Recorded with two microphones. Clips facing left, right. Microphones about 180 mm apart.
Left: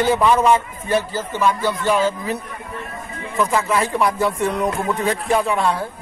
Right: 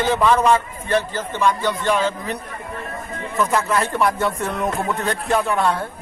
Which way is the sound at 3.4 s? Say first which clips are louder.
Left 1 dB; centre (ahead or behind).